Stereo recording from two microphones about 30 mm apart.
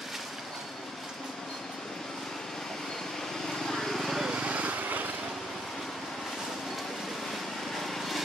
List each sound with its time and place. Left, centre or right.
3.4 s vehicle: centre
4.4 s vehicle: right
7.8 s lawn mower: centre